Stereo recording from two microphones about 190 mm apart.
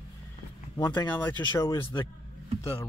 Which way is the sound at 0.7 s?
20° left (ahead or behind).